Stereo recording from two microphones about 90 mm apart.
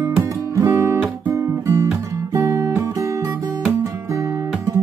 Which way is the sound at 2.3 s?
40° right (ahead or behind).